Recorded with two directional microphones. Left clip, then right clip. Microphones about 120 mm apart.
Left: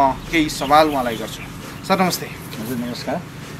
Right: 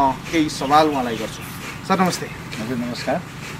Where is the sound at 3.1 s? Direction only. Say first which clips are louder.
Right 3 dB; centre (ahead or behind).